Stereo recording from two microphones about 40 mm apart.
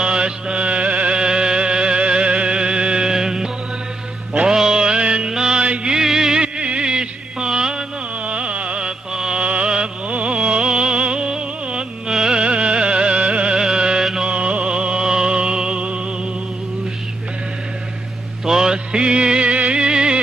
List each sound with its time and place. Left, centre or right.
0.0 s music: right
5.3 s mantra: centre
5.9 s music: centre
6.4 s a sound: right
8.3 s music: right
14.2 s music: right
18.4 s music: centre